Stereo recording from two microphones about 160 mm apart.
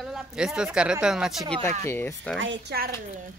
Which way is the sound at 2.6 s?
70° right (ahead or behind).